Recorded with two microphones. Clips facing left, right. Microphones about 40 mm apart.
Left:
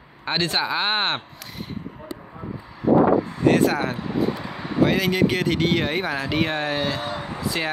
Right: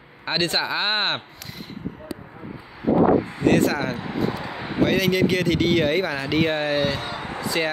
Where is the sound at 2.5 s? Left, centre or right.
Right.